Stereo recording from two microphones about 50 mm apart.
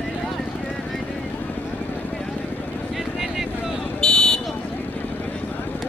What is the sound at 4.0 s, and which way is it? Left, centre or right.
Vehicle, centre.